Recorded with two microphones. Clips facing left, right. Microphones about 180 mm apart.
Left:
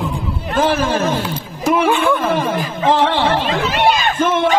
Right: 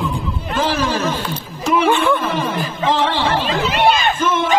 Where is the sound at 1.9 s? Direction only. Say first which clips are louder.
Even; 5° left (ahead or behind).